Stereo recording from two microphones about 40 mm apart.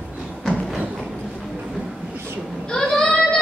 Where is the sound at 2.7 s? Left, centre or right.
Centre.